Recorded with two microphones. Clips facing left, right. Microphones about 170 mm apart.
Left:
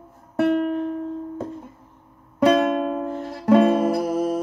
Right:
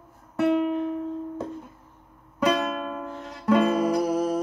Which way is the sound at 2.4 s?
55° left (ahead or behind).